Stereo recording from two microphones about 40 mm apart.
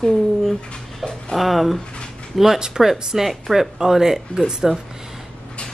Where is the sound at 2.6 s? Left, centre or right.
Centre.